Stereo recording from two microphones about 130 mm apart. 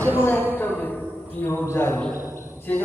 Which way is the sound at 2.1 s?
20° right (ahead or behind).